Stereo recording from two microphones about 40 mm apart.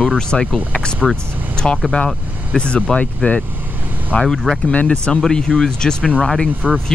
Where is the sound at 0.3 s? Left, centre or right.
Centre.